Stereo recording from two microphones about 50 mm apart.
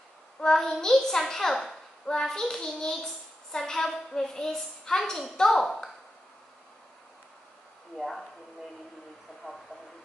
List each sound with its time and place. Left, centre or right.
0.4 s a child's voice: centre
7.9 s speech: centre
9.4 s a sound: left